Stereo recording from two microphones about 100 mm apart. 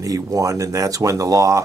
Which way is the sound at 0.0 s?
35° right (ahead or behind).